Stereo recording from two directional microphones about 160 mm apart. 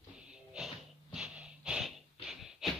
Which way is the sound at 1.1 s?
5° right (ahead or behind).